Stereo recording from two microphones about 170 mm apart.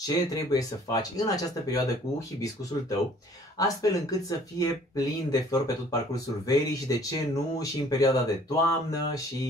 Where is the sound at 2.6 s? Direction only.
20° left (ahead or behind).